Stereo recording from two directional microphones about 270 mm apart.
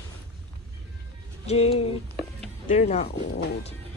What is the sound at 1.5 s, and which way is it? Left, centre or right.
Speech, left.